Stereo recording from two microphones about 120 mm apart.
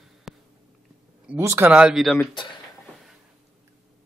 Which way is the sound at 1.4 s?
25° right (ahead or behind).